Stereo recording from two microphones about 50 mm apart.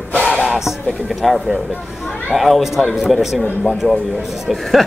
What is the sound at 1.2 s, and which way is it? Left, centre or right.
A man's voice, centre.